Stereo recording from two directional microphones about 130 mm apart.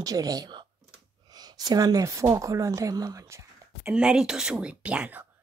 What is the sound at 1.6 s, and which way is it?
Speech, 30° right (ahead or behind).